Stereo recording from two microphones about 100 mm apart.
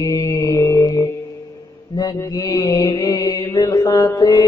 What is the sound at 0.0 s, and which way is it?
Mantra, 35° left (ahead or behind).